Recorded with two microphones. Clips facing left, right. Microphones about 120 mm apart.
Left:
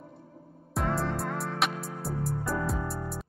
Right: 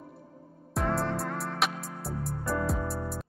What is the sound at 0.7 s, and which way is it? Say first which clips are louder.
Music: right 1 dB; centre (ahead or behind).